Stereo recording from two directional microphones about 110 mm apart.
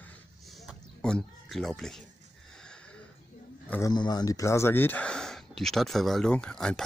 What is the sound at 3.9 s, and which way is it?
Speech, 40° left (ahead or behind).